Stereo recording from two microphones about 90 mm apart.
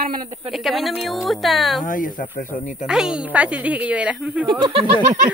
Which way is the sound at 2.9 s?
5° right (ahead or behind).